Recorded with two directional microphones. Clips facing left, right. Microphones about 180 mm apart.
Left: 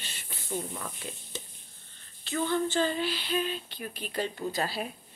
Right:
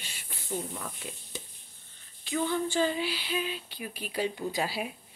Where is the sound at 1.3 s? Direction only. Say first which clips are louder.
Left 1 dB; 10° right (ahead or behind).